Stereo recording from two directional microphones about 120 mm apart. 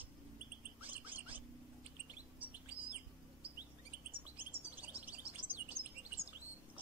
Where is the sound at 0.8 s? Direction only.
15° right (ahead or behind).